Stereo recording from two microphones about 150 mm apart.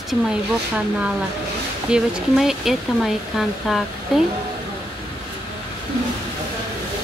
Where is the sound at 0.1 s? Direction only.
5° right (ahead or behind).